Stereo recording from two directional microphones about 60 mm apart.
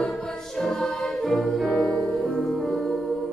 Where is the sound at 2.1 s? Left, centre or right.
Centre.